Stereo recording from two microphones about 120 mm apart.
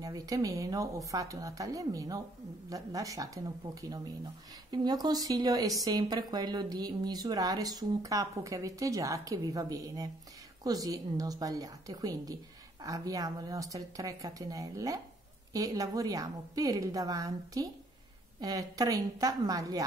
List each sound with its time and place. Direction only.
0.0 s speech: 30° right (ahead or behind)